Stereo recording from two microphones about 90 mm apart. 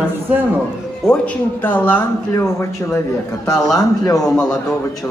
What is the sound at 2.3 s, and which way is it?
A man's voice, 35° left (ahead or behind).